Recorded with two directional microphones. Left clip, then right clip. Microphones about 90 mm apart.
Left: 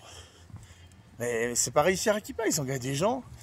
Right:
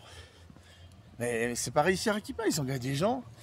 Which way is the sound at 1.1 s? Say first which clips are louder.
Left 2 dB; 20° right (ahead or behind).